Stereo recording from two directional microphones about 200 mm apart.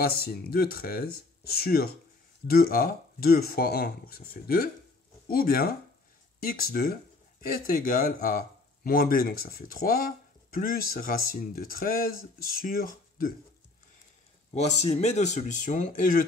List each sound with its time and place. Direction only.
0.0 s speech: 50° left (ahead or behind)
14.5 s speech: 35° left (ahead or behind)